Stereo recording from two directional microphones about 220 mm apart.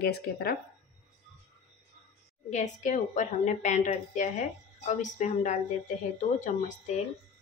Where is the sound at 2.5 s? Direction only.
30° left (ahead or behind).